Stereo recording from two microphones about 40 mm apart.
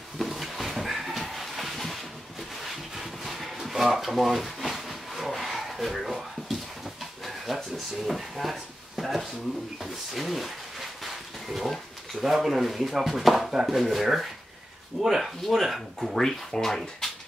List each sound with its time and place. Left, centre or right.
0.2 s a sound: centre
9.8 s speech: centre
16.1 s speech: centre